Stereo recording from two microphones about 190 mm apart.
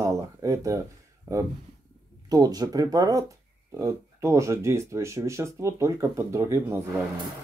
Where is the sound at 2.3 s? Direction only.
20° right (ahead or behind).